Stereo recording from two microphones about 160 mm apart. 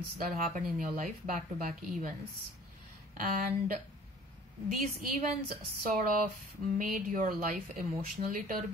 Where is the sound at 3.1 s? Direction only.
60° right (ahead or behind).